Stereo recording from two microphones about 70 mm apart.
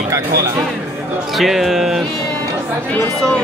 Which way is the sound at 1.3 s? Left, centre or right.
Centre.